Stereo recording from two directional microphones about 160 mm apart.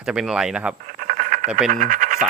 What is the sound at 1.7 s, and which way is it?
Speech, 60° right (ahead or behind).